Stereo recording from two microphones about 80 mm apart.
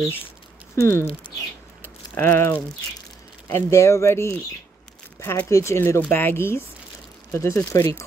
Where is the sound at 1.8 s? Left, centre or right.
Left.